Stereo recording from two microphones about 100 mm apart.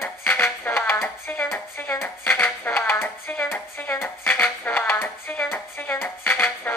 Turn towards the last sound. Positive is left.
turn(degrees=20)  # may be behind; listen again after turning